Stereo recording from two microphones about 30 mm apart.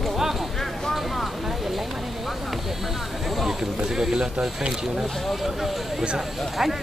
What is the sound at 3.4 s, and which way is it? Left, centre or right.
Speech, centre.